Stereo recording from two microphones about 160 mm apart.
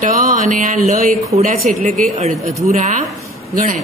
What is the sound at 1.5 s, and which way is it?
Speech, 55° right (ahead or behind).